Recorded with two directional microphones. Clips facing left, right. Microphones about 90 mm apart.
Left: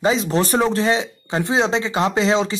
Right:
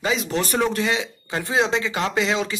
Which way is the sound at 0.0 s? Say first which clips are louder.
Left 5 dB; 35° left (ahead or behind).